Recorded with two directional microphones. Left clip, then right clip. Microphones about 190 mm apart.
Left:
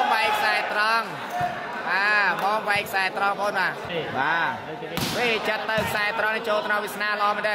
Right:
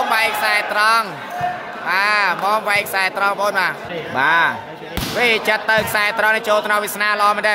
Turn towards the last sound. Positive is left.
turn(degrees=-30)  # may be behind; listen again after turning